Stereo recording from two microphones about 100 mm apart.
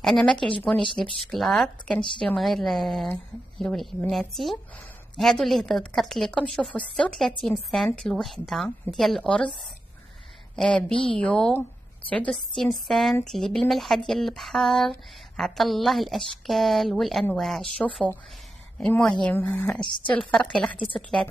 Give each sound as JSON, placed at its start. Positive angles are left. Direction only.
{"t": 0.0, "sound": "a woman's voice", "side_deg": 5}
{"t": 10.9, "sound": "speech", "side_deg": 65}
{"t": 11.1, "sound": "a woman's voice", "side_deg": 5}